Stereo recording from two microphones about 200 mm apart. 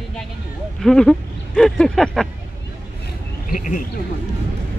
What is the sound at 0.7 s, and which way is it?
Speech, 5° left (ahead or behind).